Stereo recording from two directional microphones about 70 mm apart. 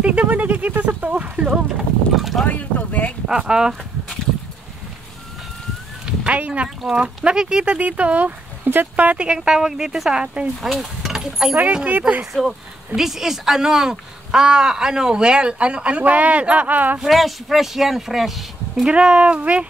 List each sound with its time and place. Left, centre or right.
0.0 s speech: right
2.4 s boat: left
3.3 s speech: centre
6.0 s a sound: centre
6.8 s speech: centre
10.6 s speech: centre
11.5 s speech: right
12.3 s speech: centre; by 17.0 s right
17.0 s speech: centre
18.9 s speech: centre